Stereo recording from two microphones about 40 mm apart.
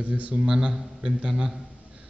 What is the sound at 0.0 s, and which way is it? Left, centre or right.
Speech, right.